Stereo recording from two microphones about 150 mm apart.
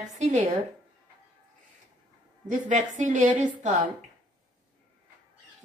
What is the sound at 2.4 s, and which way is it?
A woman's voice, 55° right (ahead or behind).